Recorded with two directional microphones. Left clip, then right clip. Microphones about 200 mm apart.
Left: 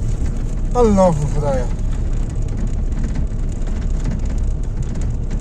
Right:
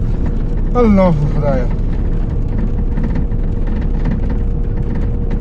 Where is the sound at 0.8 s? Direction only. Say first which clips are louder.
Right 1 dB; 40° left (ahead or behind).